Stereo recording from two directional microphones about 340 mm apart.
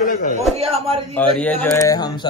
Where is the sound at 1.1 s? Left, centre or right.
Centre.